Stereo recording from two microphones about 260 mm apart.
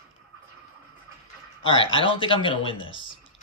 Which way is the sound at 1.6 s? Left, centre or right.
Centre.